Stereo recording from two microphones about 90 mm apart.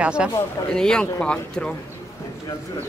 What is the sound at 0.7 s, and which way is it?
Speech, 10° left (ahead or behind).